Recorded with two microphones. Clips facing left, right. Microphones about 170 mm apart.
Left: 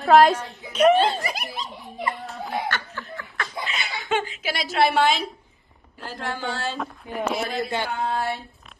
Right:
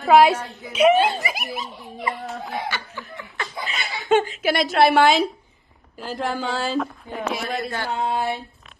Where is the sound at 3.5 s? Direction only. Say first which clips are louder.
Even; centre (ahead or behind).